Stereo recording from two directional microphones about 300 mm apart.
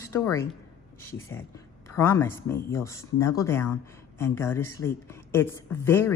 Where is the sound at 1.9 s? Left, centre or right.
Centre.